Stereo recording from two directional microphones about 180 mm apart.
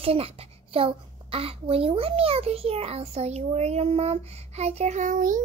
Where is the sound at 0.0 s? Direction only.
30° right (ahead or behind).